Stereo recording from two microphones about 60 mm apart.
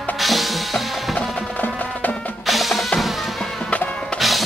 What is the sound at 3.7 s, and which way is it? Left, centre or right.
Music, left.